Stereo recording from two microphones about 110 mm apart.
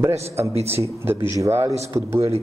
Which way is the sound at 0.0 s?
25° right (ahead or behind).